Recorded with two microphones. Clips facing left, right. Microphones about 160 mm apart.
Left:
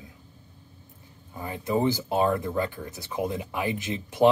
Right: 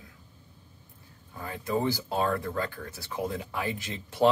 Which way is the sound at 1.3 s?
20° left (ahead or behind).